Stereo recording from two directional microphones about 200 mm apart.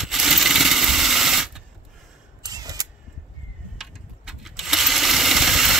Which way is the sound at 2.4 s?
20° right (ahead or behind).